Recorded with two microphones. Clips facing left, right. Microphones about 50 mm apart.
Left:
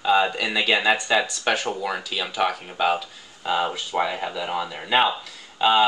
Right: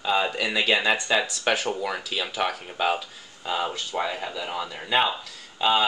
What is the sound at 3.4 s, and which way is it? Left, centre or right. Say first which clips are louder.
Speech: left 4 dB; centre.